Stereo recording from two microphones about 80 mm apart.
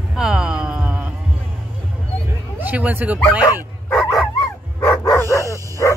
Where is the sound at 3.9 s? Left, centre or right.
Centre.